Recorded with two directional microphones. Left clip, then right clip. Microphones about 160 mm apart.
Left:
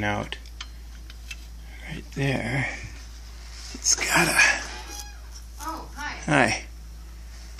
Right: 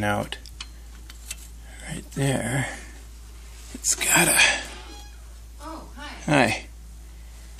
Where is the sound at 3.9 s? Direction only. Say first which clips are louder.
Even; 20° right (ahead or behind).